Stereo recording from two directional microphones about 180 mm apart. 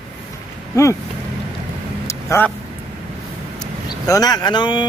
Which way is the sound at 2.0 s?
15° left (ahead or behind).